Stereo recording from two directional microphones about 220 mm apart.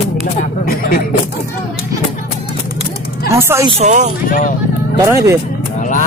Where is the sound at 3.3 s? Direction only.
10° right (ahead or behind).